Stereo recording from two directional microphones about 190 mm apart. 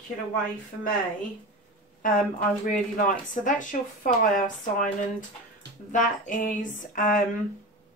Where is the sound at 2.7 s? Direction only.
45° left (ahead or behind).